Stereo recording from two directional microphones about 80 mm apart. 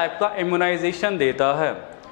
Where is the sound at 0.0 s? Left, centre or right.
Centre.